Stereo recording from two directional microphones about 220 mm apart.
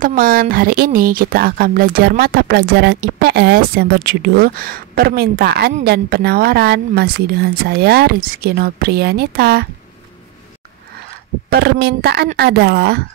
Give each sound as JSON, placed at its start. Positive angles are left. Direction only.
{"t": 0.0, "sound": "speech", "side_deg": -40}
{"t": 11.5, "sound": "speech", "side_deg": -45}